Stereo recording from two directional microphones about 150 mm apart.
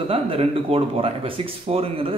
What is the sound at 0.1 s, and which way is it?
Speech, 40° right (ahead or behind).